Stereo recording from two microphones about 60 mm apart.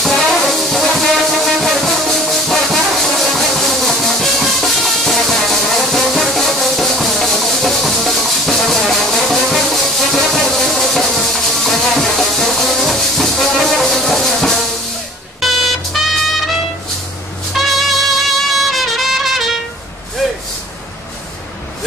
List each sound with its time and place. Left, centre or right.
0.0 s music: centre
15.4 s vehicle: centre
17.6 s music: centre